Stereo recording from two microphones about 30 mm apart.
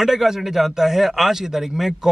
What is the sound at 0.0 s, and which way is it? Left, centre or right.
A man's voice, centre.